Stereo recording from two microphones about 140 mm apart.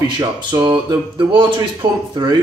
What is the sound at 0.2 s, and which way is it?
A man's voice, 35° right (ahead or behind).